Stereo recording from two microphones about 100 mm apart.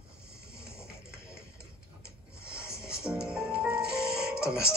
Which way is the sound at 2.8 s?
10° right (ahead or behind).